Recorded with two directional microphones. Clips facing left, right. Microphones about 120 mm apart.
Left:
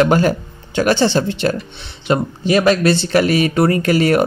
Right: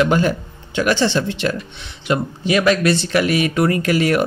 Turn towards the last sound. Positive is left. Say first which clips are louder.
# left 3 dB
turn(degrees=35)  # may be behind; listen again after turning